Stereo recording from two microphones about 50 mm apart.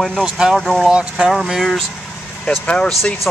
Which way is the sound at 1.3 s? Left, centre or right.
Centre.